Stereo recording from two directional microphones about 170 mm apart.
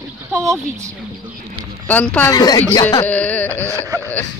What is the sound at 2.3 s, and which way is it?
Speech, 20° left (ahead or behind).